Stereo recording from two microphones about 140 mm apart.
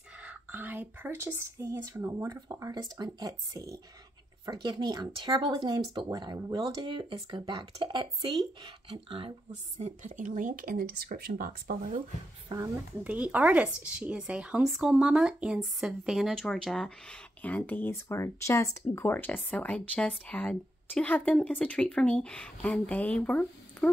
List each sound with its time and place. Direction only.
0.2 s speech: 10° right (ahead or behind); by 6.0 s 35° right (ahead or behind)
6.0 s speech: 25° right (ahead or behind)
9.8 s speech: 60° right (ahead or behind)
12.5 s speech: 35° right (ahead or behind)
13.0 s a woman's voice: 10° right (ahead or behind); by 23.9 s 10° left (ahead or behind)